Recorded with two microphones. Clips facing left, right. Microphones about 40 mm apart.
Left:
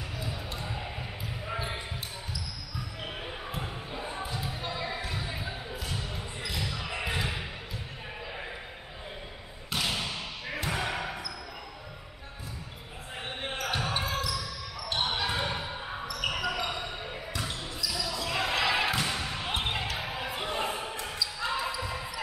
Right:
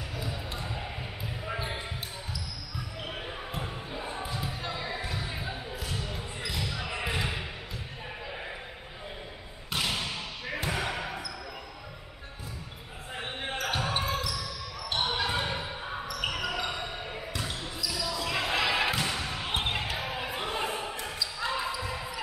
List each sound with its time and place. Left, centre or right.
0.2 s basketball bounce: centre
3.1 s basketball bounce: centre
9.7 s basketball bounce: centre
13.5 s basketball bounce: centre
18.4 s thump: centre
19.0 s basketball bounce: centre
21.4 s a sound: centre
21.8 s basketball bounce: centre